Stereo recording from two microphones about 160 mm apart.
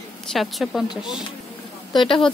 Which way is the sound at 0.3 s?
Centre (ahead or behind).